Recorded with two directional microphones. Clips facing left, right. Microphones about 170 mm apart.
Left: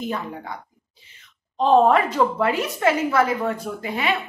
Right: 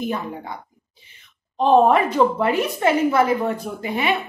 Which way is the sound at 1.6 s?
15° right (ahead or behind).